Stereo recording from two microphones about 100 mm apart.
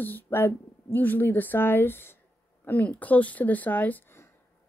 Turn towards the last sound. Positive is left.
turn(degrees=25)  # may be behind; listen again after turning